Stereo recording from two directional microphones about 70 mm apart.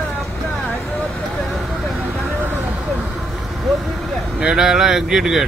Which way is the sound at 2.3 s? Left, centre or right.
Right.